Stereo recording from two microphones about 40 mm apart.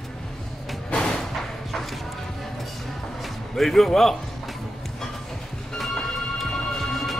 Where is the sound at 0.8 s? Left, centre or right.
Left.